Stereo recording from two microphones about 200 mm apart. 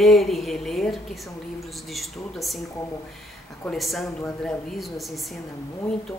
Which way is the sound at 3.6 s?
Centre (ahead or behind).